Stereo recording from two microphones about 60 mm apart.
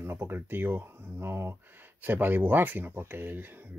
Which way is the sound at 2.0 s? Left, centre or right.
Right.